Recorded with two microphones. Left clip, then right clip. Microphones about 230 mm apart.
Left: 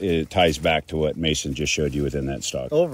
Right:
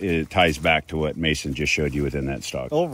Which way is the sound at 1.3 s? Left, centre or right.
Right.